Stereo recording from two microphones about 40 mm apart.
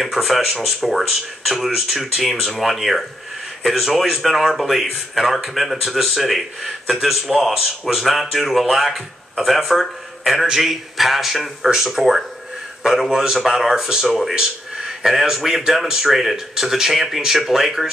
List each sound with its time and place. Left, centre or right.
0.0 s speech: centre
14.0 s speech: centre